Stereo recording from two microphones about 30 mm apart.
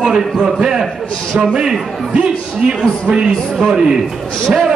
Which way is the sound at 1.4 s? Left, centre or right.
Right.